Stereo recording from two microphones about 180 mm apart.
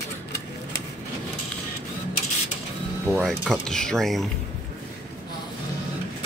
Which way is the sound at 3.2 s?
5° left (ahead or behind).